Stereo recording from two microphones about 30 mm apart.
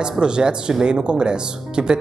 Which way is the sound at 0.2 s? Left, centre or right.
Right.